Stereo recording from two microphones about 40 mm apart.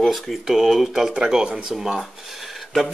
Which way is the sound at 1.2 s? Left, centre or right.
Centre.